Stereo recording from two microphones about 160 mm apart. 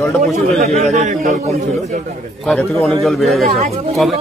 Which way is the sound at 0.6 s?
45° right (ahead or behind).